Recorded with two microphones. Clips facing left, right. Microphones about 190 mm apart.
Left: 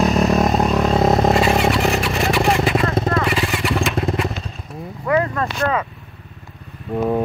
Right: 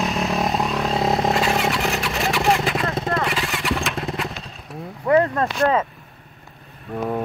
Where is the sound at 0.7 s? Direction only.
45° left (ahead or behind).